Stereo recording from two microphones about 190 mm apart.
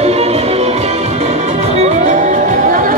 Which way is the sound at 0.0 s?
35° right (ahead or behind).